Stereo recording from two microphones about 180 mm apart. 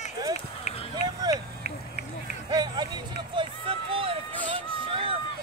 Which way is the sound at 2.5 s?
25° right (ahead or behind).